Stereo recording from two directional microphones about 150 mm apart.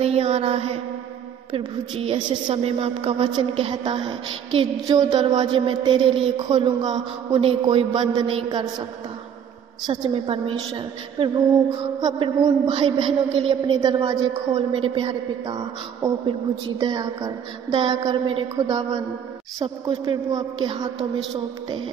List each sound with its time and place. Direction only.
0.0 s mantra: 45° right (ahead or behind)
1.5 s a woman's voice: 35° right (ahead or behind)
9.8 s a woman's voice: 35° right (ahead or behind)